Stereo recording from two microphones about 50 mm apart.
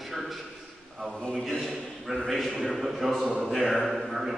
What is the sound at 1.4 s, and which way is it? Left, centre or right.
A man's voice, centre.